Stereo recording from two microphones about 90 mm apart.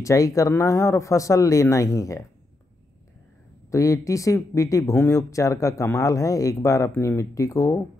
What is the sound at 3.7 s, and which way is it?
Speech, 35° left (ahead or behind).